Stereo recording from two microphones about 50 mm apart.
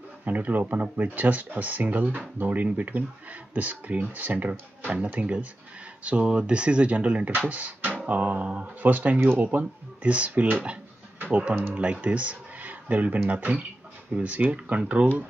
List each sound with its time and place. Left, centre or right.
0.2 s speech: right